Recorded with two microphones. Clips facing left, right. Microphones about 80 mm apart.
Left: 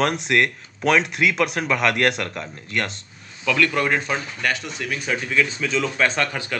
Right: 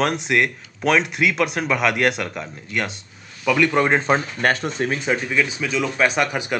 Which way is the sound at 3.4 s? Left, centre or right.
Centre.